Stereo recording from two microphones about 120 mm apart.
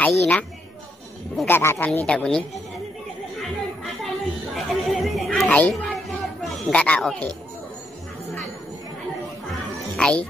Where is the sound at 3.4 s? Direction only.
Centre (ahead or behind).